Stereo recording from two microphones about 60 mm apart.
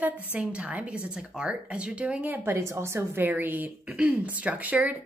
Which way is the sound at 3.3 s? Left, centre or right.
Right.